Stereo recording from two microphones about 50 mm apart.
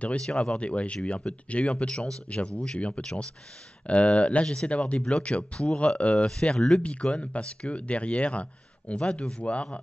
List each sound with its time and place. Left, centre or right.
0.0 s speech: left
4.9 s speech: centre
5.9 s speech: left